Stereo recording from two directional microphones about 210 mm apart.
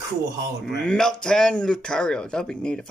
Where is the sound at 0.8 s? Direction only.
5° left (ahead or behind).